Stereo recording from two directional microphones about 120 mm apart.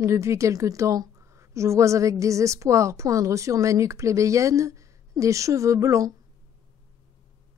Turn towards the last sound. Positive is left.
turn(degrees=-25)  # may be behind; listen again after turning